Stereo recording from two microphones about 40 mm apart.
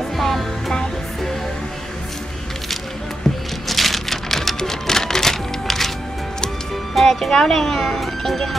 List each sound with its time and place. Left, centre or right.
0.2 s music: centre
3.3 s a sound: centre
3.6 s rain: centre
7.0 s speech: centre